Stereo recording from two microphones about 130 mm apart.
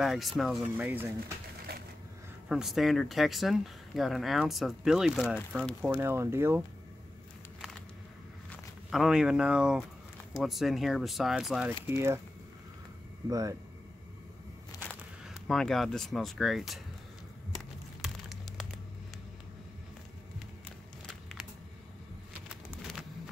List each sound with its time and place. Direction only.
0.0 s speech: centre (ahead or behind)
0.7 s speech: 15° right (ahead or behind)
2.4 s speech: 5° right (ahead or behind)
5.9 s speech: 20° right (ahead or behind)
8.9 s speech: 5° right (ahead or behind)
11.8 s speech: 20° right (ahead or behind)
13.3 s speech: 25° right (ahead or behind)
14.7 s a sound: 30° left (ahead or behind)
15.2 s speech: centre (ahead or behind)
18.0 s a sound: centre (ahead or behind)